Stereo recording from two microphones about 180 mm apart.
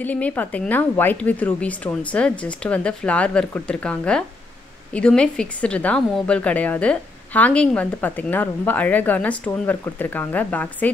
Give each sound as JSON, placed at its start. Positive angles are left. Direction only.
{"t": 0.0, "sound": "a woman's voice", "side_deg": 10}